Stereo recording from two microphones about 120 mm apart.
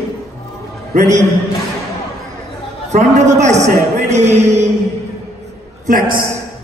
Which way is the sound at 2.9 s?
70° right (ahead or behind).